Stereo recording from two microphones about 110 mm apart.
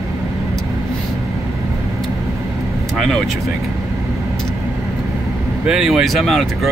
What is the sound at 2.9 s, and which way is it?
Speech, centre (ahead or behind).